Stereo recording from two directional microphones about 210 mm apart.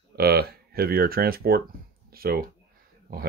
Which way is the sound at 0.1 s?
50° right (ahead or behind).